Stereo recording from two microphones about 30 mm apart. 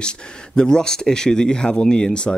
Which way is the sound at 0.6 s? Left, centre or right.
Left.